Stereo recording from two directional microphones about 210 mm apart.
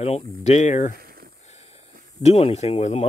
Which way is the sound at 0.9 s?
45° right (ahead or behind).